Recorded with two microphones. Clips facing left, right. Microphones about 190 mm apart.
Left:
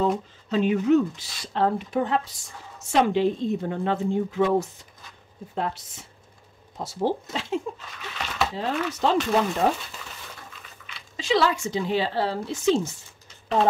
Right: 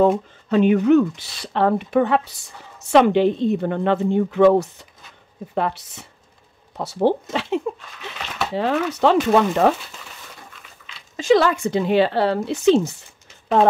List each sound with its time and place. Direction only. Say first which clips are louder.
0.0 s a woman's voice: right 7 dB; 60° right (ahead or behind)
11.1 s speech: right 6 dB; 50° right (ahead or behind); by 12.9 s 65° right (ahead or behind)